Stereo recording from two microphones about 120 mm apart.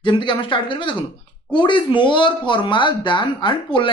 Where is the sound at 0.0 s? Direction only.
40° left (ahead or behind).